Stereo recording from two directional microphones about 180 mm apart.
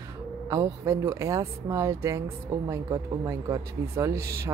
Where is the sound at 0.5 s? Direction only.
20° right (ahead or behind).